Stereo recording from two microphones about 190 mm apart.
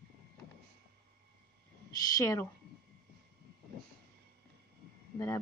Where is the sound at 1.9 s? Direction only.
20° left (ahead or behind).